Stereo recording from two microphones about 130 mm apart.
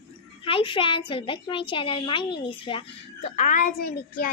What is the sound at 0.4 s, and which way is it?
A child's voice, 40° left (ahead or behind).